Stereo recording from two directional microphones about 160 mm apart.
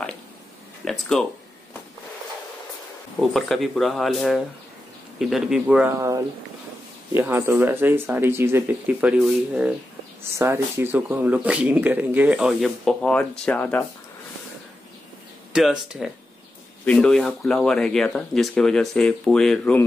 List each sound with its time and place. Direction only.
0.8 s speech: 5° left (ahead or behind)
3.2 s speech: centre (ahead or behind)
5.9 s speech: 20° right (ahead or behind); by 13.8 s 10° left (ahead or behind)
15.5 s speech: 5° right (ahead or behind)